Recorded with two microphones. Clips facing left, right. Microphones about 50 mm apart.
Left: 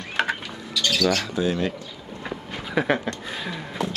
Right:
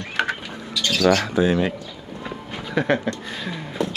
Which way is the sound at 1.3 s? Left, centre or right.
Right.